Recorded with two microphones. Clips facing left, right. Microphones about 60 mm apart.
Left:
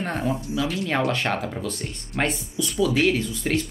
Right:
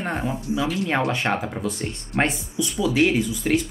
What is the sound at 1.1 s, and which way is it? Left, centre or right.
Speech, centre.